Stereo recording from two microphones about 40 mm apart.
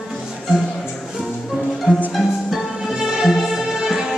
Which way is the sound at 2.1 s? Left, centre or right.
Centre.